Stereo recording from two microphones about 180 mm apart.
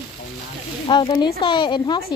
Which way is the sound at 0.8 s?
25° left (ahead or behind).